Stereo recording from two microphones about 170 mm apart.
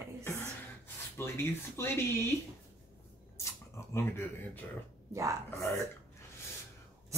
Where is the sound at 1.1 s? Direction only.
15° left (ahead or behind).